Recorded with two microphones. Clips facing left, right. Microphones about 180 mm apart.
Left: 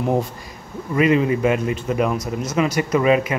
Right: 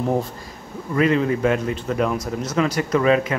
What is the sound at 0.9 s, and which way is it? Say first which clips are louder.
Speech: left 2 dB; 10° left (ahead or behind).